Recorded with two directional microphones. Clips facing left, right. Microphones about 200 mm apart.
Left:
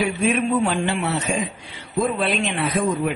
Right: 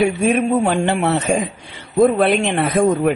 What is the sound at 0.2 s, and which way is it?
Speech, 40° right (ahead or behind).